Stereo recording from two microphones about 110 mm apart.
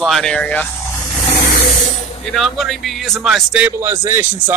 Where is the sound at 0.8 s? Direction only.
25° left (ahead or behind).